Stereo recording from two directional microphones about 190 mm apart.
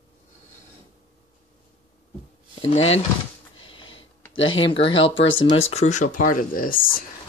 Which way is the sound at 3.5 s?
90° left.